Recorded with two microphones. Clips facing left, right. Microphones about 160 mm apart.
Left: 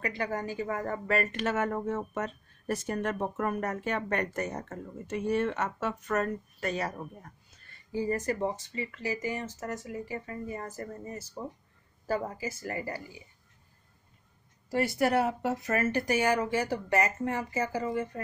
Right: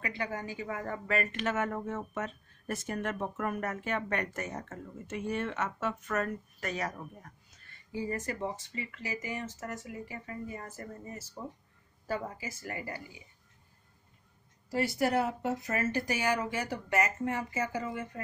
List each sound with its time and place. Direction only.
0.0 s a woman's voice: 40° left (ahead or behind)
7.9 s a woman's voice: 40° left (ahead or behind)
14.7 s a woman's voice: 60° left (ahead or behind); by 18.2 s 35° left (ahead or behind)